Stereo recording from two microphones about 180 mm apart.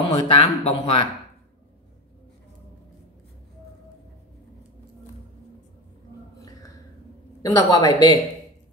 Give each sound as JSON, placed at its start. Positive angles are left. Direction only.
{"t": 0.0, "sound": "speech", "side_deg": 30}
{"t": 7.4, "sound": "speech", "side_deg": 20}